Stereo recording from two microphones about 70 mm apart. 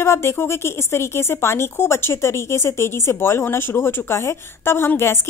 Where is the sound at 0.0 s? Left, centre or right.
Left.